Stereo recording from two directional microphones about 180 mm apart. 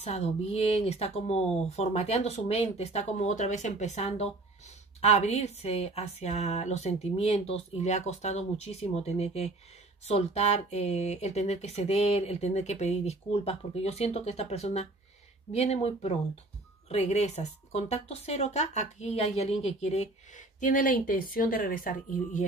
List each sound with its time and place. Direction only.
0.0 s speech: 35° left (ahead or behind)